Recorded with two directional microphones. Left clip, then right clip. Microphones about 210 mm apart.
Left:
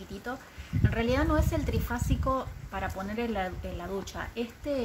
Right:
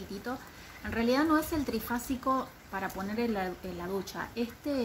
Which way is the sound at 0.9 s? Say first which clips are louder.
Right 1 dB; 5° left (ahead or behind).